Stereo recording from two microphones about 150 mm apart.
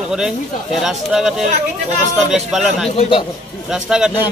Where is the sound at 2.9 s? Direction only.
35° left (ahead or behind).